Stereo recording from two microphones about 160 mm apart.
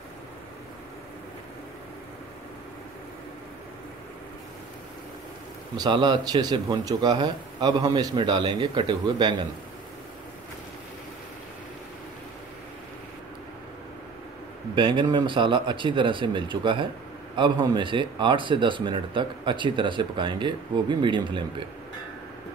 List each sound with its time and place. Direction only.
5.8 s a man's voice: 30° right (ahead or behind)
14.8 s a man's voice: 30° right (ahead or behind)